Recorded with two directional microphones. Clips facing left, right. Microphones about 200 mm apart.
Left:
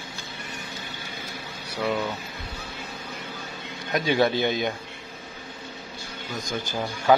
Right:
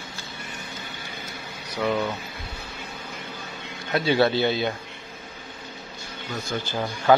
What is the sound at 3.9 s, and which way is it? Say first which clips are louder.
Speech: right 1 dB; 15° left (ahead or behind).